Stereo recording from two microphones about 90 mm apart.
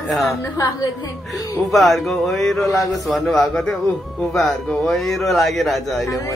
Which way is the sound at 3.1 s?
5° left (ahead or behind).